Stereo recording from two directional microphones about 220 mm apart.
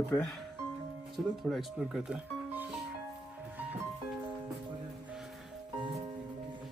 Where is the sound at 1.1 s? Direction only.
Centre (ahead or behind).